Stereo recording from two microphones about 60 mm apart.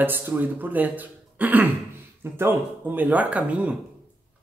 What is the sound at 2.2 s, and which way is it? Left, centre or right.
Speech, right.